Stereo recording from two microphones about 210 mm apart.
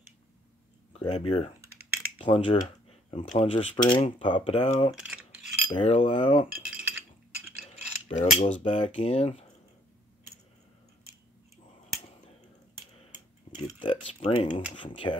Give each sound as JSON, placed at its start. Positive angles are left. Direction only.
{"t": 0.9, "sound": "speech", "side_deg": 25}
{"t": 4.9, "sound": "mechanisms", "side_deg": -5}
{"t": 5.7, "sound": "speech", "side_deg": 25}
{"t": 6.6, "sound": "chink", "side_deg": -5}
{"t": 7.6, "sound": "mechanisms", "side_deg": 30}
{"t": 8.6, "sound": "speech", "side_deg": 25}
{"t": 13.6, "sound": "tick-tock", "side_deg": 25}
{"t": 14.3, "sound": "speech", "side_deg": 30}